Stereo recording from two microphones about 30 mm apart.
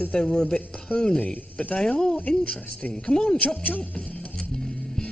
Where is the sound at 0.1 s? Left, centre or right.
Left.